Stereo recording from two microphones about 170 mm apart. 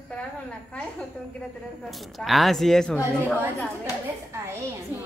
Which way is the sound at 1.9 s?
Centre (ahead or behind).